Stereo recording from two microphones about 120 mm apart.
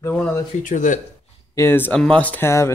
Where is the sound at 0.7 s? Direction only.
90° left.